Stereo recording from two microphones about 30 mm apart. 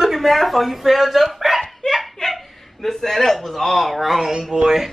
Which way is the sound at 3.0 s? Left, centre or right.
Centre.